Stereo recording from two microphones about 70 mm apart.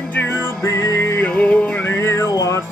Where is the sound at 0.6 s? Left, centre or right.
Left.